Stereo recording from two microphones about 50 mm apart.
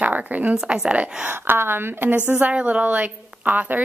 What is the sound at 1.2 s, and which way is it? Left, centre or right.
A woman's voice, right.